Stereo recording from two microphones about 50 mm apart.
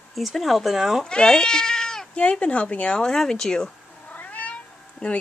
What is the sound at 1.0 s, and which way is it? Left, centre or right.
Speech, centre.